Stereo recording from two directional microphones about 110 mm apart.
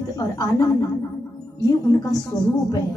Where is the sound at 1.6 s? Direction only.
35° left (ahead or behind).